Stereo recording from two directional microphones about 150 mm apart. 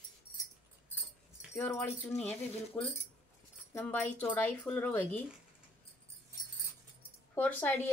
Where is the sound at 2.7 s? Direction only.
20° left (ahead or behind).